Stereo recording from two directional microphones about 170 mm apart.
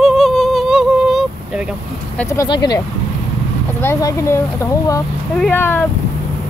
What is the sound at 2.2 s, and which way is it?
Speech, 20° left (ahead or behind).